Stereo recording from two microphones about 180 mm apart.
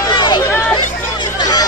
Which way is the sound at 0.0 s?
25° left (ahead or behind).